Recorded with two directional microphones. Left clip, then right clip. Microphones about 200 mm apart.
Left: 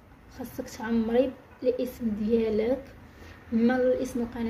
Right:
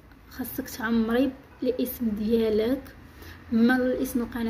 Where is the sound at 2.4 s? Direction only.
35° right (ahead or behind).